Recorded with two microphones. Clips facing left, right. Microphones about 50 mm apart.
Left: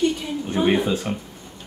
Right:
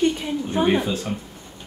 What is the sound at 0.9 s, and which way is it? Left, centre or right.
Speech, centre.